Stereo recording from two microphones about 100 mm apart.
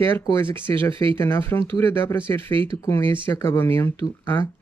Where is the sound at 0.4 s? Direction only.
20° left (ahead or behind).